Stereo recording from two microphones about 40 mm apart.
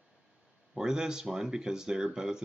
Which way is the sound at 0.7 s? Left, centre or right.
Centre.